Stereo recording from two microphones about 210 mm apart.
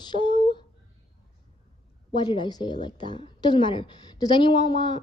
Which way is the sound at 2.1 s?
20° left (ahead or behind).